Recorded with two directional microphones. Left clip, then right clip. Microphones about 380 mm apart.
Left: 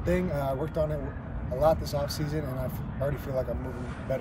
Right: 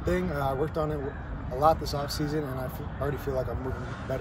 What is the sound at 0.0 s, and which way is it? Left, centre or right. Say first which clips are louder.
Speech: even; centre.